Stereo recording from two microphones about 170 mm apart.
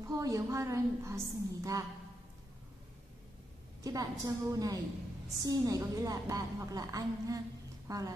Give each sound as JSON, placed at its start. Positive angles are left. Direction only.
{"t": 0.0, "sound": "a woman's voice", "side_deg": -20}
{"t": 3.8, "sound": "a woman's voice", "side_deg": -20}